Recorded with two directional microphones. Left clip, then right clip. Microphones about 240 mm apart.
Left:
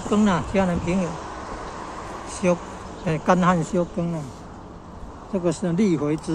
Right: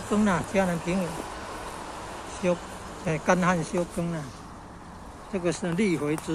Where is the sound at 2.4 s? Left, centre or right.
Centre.